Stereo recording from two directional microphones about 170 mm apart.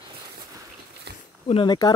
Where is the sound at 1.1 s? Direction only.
75° right (ahead or behind).